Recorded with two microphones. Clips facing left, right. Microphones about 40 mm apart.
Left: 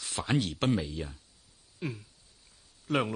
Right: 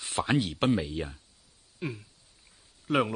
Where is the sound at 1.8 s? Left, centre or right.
Centre.